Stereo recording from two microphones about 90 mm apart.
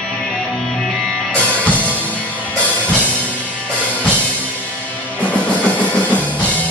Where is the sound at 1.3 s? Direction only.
15° left (ahead or behind).